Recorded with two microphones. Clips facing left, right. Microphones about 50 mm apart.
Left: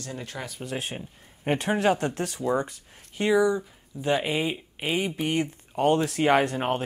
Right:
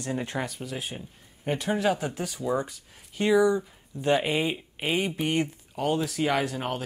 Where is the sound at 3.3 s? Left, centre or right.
Centre.